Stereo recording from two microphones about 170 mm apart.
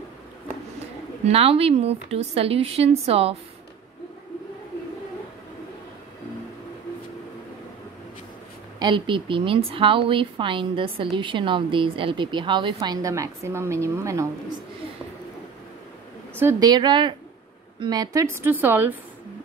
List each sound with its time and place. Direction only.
1.2 s speech: 35° right (ahead or behind)
8.7 s a woman's voice: 25° right (ahead or behind)
16.3 s a woman's voice: 20° right (ahead or behind)